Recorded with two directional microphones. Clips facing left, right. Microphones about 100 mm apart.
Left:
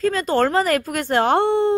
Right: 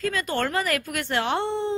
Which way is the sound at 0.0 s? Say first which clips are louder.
Left 7 dB; 35° left (ahead or behind).